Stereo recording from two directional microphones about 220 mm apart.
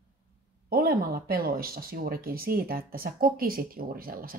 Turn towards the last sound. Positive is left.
turn(degrees=-40)  # may be behind; listen again after turning